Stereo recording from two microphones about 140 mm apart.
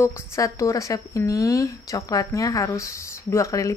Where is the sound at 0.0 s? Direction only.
20° left (ahead or behind).